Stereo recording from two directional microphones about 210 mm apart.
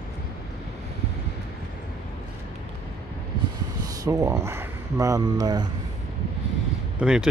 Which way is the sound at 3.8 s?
15° right (ahead or behind).